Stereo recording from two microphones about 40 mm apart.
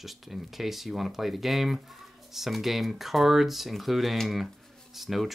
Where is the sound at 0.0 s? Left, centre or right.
Centre.